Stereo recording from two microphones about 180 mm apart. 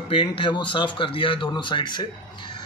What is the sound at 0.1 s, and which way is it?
Speech, 30° left (ahead or behind).